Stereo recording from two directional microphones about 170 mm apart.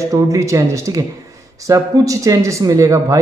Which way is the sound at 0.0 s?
20° right (ahead or behind).